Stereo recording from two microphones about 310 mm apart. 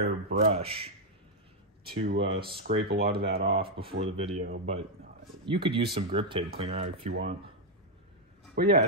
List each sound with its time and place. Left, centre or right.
0.0 s speech: right
0.6 s speech: centre
1.9 s speech: right
3.4 s speech: centre
8.5 s speech: right